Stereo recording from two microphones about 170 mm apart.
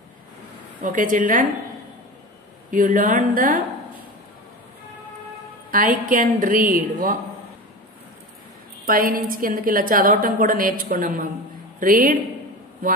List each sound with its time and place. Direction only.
0.8 s a woman's voice: 50° right (ahead or behind)
2.7 s a woman's voice: 50° right (ahead or behind)
5.7 s a woman's voice: 50° right (ahead or behind)
8.8 s a woman's voice: 55° right (ahead or behind)